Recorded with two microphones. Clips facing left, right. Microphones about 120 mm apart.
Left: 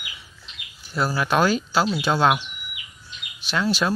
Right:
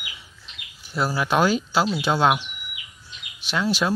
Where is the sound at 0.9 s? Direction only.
15° right (ahead or behind).